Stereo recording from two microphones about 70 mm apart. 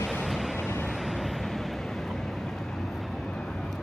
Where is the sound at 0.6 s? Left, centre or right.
Left.